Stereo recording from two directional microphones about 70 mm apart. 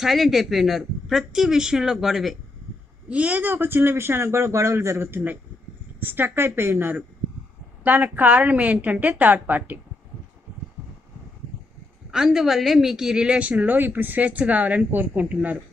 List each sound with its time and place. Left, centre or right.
0.0 s speech: centre
3.1 s a man's voice: centre; by 5.0 s right
5.0 s a woman's voice: right
12.1 s a woman's voice: centre